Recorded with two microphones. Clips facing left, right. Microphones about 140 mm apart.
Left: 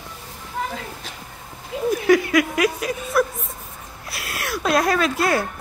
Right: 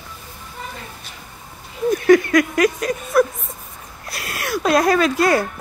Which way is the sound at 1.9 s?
5° left (ahead or behind).